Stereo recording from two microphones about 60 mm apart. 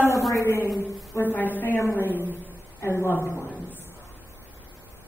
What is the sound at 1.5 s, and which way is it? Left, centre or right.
Speech, left.